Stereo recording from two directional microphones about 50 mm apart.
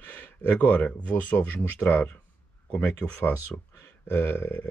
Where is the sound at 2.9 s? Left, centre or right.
Left.